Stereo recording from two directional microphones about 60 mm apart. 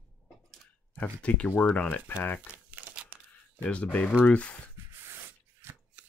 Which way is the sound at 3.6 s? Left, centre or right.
Left.